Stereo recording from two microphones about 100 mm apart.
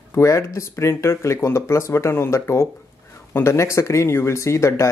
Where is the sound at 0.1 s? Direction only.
30° left (ahead or behind).